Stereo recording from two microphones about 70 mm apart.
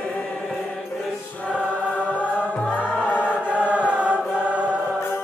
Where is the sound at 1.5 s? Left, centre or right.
Centre.